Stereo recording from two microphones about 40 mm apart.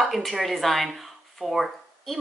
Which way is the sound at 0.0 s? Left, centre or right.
Centre.